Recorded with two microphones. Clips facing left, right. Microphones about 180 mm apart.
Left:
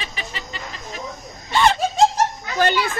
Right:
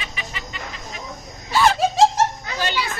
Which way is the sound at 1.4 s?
5° right (ahead or behind).